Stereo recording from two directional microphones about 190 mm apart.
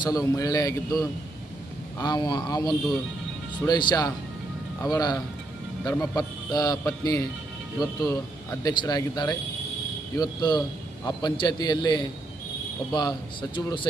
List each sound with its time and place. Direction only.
0.0 s a man's voice: 20° left (ahead or behind)